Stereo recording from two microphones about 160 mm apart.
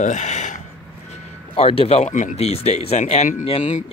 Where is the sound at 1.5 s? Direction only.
35° left (ahead or behind).